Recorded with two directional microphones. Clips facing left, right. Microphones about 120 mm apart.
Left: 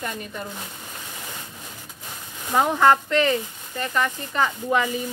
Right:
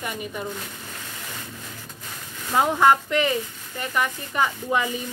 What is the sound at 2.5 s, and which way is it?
Speech, 15° right (ahead or behind).